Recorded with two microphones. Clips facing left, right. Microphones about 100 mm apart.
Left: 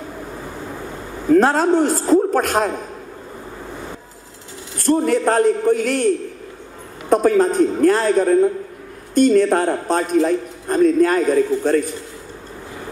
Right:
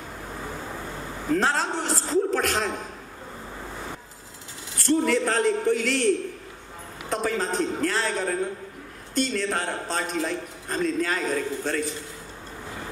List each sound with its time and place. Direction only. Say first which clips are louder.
1.3 s a man's voice: left 10 dB; 50° left (ahead or behind)
4.7 s a man's voice: left 5 dB; 50° left (ahead or behind)